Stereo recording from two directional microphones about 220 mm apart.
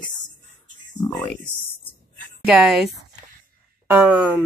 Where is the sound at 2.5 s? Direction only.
Centre (ahead or behind).